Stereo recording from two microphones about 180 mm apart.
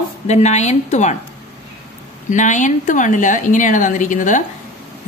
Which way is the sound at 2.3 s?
45° left (ahead or behind).